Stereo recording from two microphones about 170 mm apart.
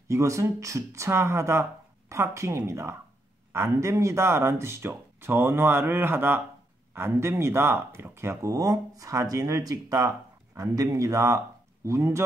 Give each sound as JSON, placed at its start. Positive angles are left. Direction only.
{"t": 0.1, "sound": "speech", "side_deg": -15}